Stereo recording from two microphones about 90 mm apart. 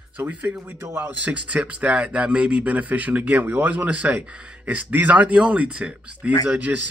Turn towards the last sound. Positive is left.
turn(degrees=-20)  # may be behind; listen again after turning